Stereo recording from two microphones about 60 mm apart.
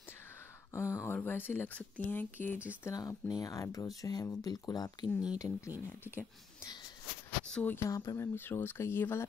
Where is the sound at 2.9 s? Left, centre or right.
Left.